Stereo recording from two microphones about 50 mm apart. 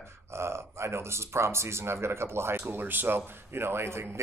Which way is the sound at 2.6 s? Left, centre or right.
Right.